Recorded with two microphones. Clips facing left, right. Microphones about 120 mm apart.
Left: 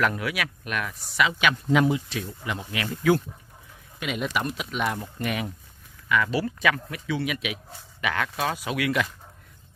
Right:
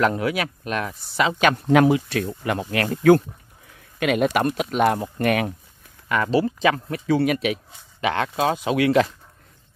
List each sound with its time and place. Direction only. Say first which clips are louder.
0.0 s speech: right 5 dB; 30° right (ahead or behind)
1.7 s speech: right 6 dB; 65° right (ahead or behind)
6.0 s speech: right 4 dB; 40° right (ahead or behind)
7.1 s speech: right 9 dB; 40° right (ahead or behind)